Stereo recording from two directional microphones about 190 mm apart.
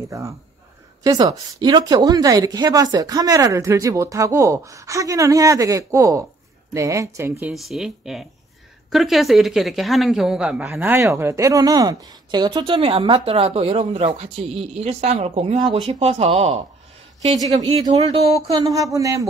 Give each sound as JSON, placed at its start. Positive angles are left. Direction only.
{"t": 1.0, "sound": "speech", "side_deg": -20}
{"t": 17.8, "sound": "speech", "side_deg": -35}
{"t": 18.5, "sound": "speech", "side_deg": -20}